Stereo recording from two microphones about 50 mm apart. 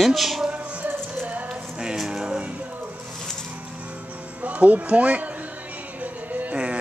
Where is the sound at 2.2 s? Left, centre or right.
Right.